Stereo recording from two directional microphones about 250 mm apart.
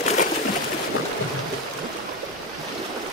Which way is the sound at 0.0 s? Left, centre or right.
Left.